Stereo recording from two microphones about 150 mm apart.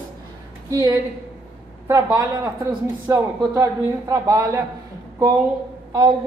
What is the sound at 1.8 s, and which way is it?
A woman's voice, 20° right (ahead or behind).